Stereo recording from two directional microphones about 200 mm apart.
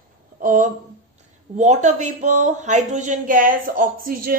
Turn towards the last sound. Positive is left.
turn(degrees=-45)  # may be behind; listen again after turning